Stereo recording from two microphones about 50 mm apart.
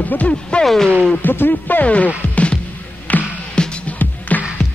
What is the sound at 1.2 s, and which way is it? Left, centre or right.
Music, left.